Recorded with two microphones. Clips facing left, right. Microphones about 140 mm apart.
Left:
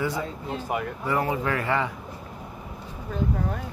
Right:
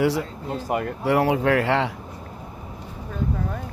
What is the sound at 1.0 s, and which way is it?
Speech, 75° right (ahead or behind).